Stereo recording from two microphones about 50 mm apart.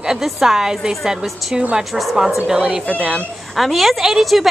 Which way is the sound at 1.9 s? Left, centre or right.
Centre.